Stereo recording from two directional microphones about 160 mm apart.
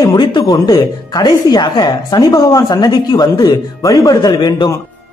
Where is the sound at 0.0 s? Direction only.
25° left (ahead or behind).